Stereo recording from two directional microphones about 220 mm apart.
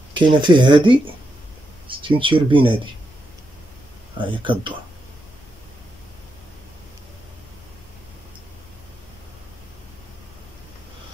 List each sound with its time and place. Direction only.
0.1 s speech: 20° right (ahead or behind)
4.2 s speech: 20° right (ahead or behind)